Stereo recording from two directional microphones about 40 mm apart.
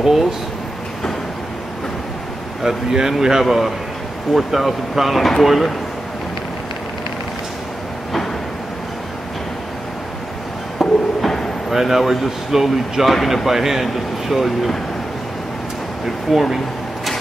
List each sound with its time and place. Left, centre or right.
2.6 s speech: centre
10.8 s a sound: centre
11.7 s speech: centre
16.3 s speech: centre